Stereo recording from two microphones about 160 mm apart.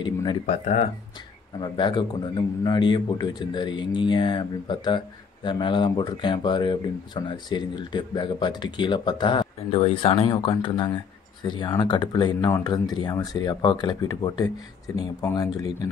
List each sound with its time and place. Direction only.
0.0 s speech: 30° left (ahead or behind)
1.6 s speech: 30° left (ahead or behind)